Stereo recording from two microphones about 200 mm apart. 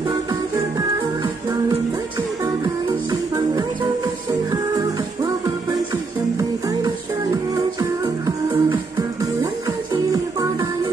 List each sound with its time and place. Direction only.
0.3 s music: 20° right (ahead or behind)